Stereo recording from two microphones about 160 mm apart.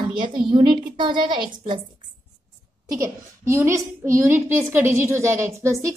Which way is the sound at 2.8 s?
20° right (ahead or behind).